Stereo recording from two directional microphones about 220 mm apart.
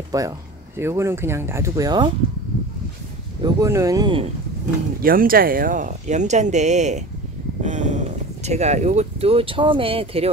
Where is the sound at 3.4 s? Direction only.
15° right (ahead or behind).